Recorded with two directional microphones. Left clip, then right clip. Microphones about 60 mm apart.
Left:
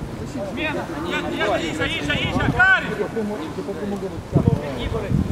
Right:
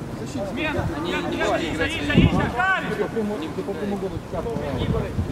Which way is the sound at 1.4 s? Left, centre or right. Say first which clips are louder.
Left 1 dB; left.